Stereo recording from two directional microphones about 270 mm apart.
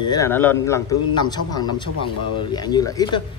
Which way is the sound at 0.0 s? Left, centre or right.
Centre.